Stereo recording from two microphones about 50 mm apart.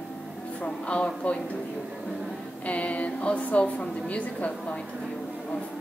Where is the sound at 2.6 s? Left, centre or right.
Left.